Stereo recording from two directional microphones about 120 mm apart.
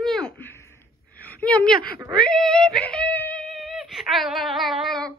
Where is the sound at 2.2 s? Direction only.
5° left (ahead or behind).